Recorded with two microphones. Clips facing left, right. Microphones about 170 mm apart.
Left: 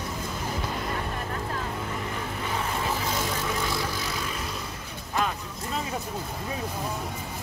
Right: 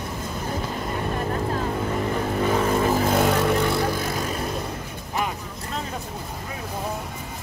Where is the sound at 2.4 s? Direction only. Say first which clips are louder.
Right 10 dB; 45° right (ahead or behind).